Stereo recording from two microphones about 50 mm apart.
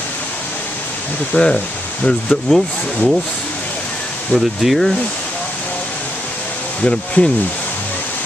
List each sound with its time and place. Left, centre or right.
1.3 s speech: centre
4.3 s speech: centre
6.8 s speech: left